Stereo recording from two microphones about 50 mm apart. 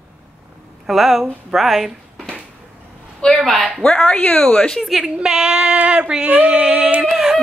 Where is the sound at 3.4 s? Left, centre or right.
Centre.